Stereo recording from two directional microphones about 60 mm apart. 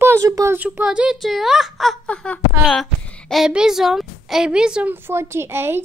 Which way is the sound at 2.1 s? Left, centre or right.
Left.